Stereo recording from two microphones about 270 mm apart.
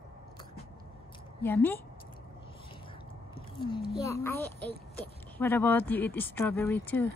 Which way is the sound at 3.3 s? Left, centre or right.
Centre.